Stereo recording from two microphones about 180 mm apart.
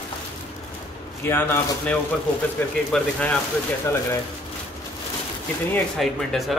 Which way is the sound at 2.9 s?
5° left (ahead or behind).